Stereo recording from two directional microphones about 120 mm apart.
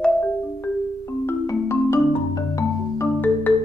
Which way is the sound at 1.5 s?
25° left (ahead or behind).